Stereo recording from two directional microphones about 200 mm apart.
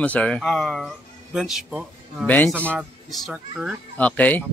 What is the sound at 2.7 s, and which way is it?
Speech, 5° right (ahead or behind).